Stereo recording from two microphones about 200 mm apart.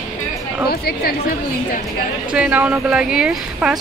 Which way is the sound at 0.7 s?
50° left (ahead or behind).